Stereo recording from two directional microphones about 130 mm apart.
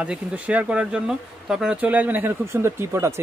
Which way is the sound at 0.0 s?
10° right (ahead or behind).